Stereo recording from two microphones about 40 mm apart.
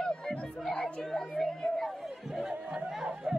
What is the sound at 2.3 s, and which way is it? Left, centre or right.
Chatter, centre.